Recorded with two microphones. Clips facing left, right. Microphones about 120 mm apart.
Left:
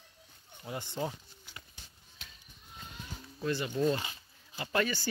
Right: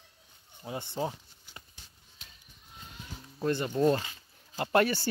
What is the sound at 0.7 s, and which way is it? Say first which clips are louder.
Speech: right 2 dB; 20° right (ahead or behind).